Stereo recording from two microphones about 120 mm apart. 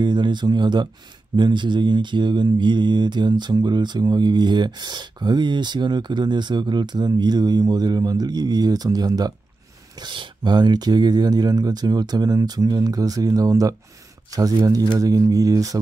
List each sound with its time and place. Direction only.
0.0 s speech: 40° right (ahead or behind)